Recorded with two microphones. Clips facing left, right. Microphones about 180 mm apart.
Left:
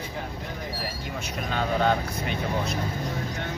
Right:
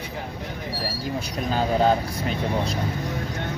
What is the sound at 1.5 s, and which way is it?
Speech, 35° right (ahead or behind).